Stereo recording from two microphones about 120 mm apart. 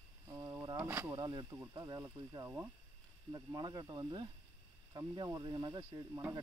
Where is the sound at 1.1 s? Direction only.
35° right (ahead or behind).